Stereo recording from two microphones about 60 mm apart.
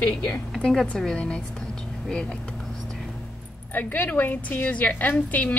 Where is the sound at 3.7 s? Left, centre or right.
Left.